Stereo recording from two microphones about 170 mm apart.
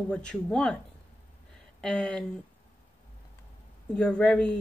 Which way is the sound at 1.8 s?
5° left (ahead or behind).